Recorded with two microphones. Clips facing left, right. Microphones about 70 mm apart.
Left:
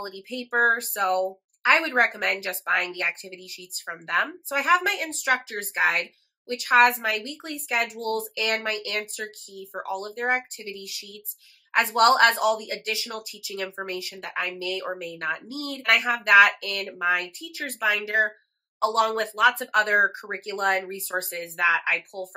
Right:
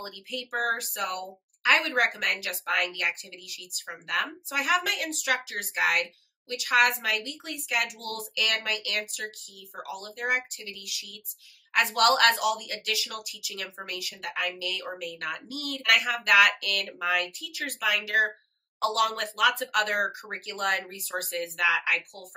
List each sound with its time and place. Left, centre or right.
0.0 s speech: left